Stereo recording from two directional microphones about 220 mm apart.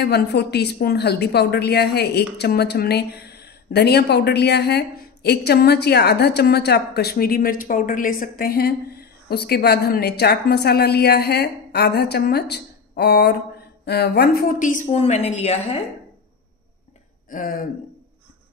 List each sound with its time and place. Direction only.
0.0 s a woman's voice: 50° left (ahead or behind); by 15.8 s 30° left (ahead or behind)
17.3 s a woman's voice: 40° left (ahead or behind)